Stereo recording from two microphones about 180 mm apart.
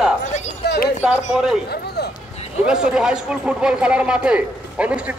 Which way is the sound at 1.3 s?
5° right (ahead or behind).